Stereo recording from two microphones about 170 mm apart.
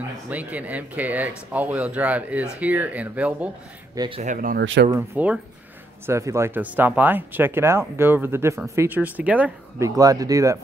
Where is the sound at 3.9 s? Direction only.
25° right (ahead or behind).